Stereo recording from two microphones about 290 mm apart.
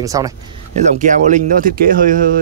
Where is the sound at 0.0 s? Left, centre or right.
Centre.